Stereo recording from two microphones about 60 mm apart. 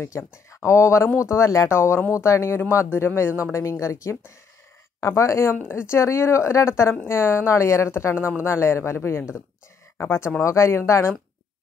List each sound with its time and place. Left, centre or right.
0.0 s a woman's voice: left
1.7 s a woman's voice: left
2.1 s speech: left
2.9 s a woman's voice: left
3.5 s a woman's voice: left